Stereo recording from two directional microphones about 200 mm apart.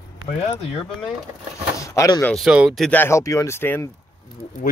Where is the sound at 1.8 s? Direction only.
15° left (ahead or behind).